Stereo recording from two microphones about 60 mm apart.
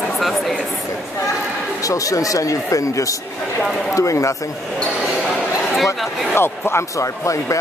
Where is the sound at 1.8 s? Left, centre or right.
Left.